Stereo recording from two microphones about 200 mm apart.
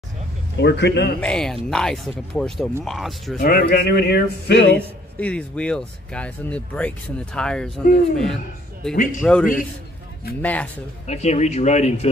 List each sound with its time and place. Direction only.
0.6 s a man's voice: 60° left (ahead or behind)
1.2 s speech: 5° left (ahead or behind)
3.3 s speech: 50° left (ahead or behind)
4.7 s speech: 5° left (ahead or behind)
8.9 s speech: 40° left (ahead or behind)
9.2 s speech: 5° left (ahead or behind)
11.1 s speech: 35° left (ahead or behind)